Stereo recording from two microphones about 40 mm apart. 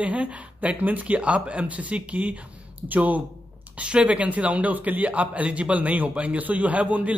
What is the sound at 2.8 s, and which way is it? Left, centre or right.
Speech, right.